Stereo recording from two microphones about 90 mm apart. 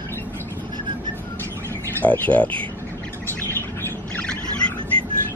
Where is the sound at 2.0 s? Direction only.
15° left (ahead or behind).